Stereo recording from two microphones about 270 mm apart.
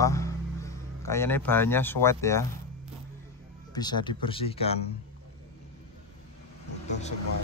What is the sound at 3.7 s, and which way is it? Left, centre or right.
Speech, centre.